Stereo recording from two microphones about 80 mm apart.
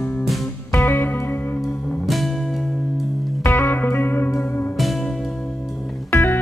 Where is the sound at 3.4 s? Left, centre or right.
Left.